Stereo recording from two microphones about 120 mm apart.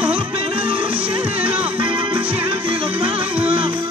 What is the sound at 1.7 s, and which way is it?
Music, 45° right (ahead or behind).